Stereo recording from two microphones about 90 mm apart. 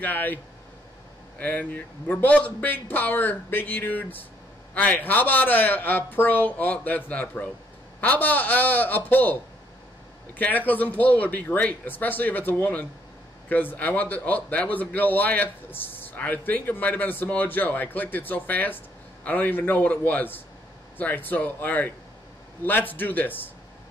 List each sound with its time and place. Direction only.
0.0 s a man's voice: 20° left (ahead or behind)
1.4 s a man's voice: 15° left (ahead or behind)